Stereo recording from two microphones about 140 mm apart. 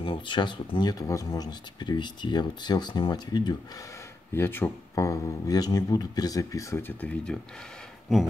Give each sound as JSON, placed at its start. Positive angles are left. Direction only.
{"t": 0.0, "sound": "speech", "side_deg": 35}
{"t": 4.3, "sound": "speech", "side_deg": 15}